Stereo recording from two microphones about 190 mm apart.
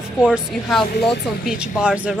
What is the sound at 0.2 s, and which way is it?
Speech, 5° right (ahead or behind).